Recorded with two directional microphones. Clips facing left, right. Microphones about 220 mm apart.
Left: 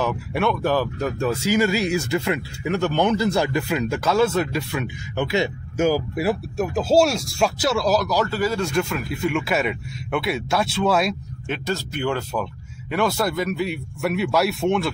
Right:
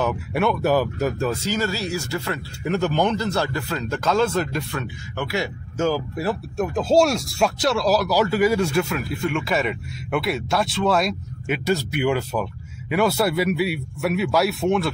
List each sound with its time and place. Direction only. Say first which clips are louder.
0.0 s speech: right 1 dB; centre (ahead or behind); by 2.4 s 20° left (ahead or behind)
2.6 s speech: even; centre (ahead or behind)
5.1 s speech: left 4 dB; 20° left (ahead or behind); by 14.9 s centre (ahead or behind)